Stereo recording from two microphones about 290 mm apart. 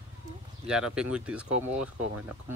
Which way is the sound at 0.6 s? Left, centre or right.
Centre.